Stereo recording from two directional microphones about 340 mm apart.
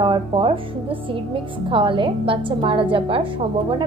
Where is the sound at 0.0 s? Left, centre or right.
Centre.